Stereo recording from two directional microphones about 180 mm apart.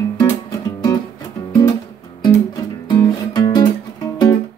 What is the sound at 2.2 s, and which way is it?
Music, 25° left (ahead or behind).